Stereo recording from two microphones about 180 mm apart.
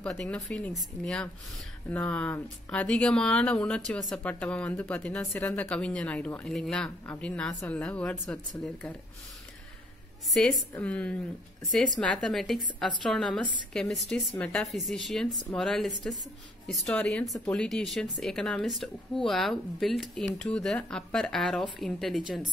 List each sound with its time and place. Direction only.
0.0 s speech: 5° left (ahead or behind)
5.5 s speech: 5° left (ahead or behind)
10.3 s speech: centre (ahead or behind)